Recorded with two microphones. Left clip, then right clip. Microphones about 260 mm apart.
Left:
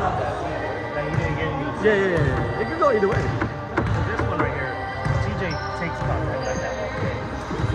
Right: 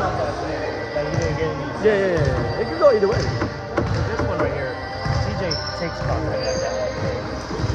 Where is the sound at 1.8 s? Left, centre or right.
Right.